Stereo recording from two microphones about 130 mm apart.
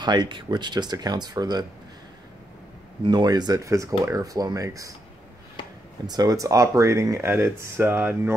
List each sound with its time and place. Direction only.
0.0 s speech: 35° right (ahead or behind)
3.1 s speech: 30° right (ahead or behind)
6.0 s speech: 30° right (ahead or behind)